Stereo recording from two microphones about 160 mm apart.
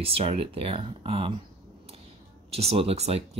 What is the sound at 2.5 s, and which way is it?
Speech, 40° right (ahead or behind).